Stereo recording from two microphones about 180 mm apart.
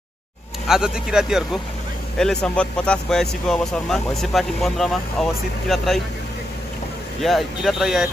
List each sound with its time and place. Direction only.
0.7 s speech: 5° right (ahead or behind)
7.2 s speech: centre (ahead or behind)